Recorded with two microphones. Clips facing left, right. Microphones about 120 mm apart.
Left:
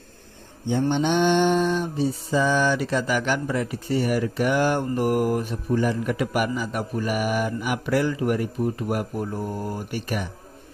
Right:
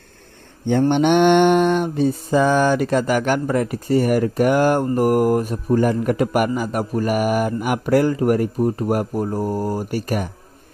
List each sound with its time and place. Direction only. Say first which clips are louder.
0.7 s mantra: right 6 dB; 60° right (ahead or behind); by 10.3 s 45° right (ahead or behind)